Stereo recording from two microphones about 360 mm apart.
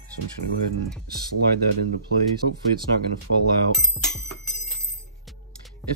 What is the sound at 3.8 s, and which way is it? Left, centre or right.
Bicycle bell, centre.